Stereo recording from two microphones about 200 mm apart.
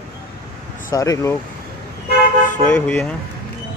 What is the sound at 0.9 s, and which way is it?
Speech, 15° left (ahead or behind).